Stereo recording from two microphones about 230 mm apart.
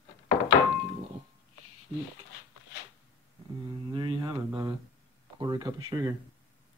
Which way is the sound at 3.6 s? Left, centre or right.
Right.